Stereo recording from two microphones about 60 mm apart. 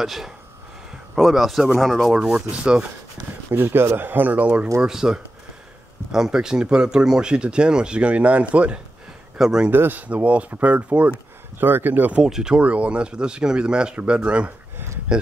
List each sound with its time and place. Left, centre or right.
0.0 s speech: centre
2.1 s speech: centre
3.5 s speech: right
4.8 s speech: centre
9.4 s speech: centre
9.7 s speech: right
11.6 s speech: right
12.2 s speech: centre
12.5 s speech: right